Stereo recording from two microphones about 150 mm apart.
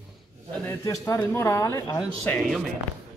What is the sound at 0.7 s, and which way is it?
Speech, 20° left (ahead or behind).